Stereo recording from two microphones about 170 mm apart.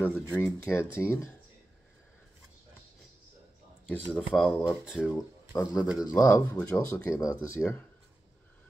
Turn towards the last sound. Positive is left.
turn(degrees=5)  # may be behind; listen again after turning